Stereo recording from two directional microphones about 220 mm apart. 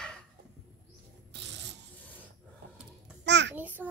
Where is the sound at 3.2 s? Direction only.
55° right (ahead or behind).